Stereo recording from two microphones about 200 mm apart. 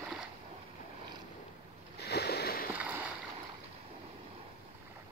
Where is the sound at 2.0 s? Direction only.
55° left (ahead or behind).